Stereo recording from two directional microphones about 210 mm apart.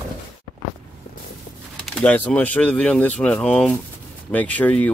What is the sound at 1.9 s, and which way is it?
Speech, 5° left (ahead or behind).